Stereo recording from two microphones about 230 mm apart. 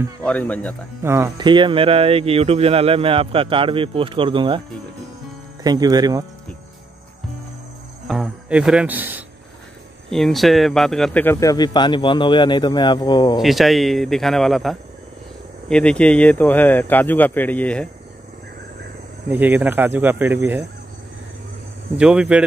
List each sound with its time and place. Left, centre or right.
0.2 s speech: centre
1.0 s speech: centre
5.6 s speech: centre
8.1 s speech: centre
13.4 s speech: centre
19.3 s speech: centre
21.9 s speech: centre